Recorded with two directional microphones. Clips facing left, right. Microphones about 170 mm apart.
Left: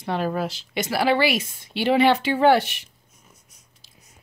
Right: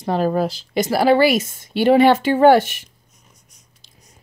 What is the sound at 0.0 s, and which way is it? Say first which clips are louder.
Speech: right 6 dB; 40° right (ahead or behind).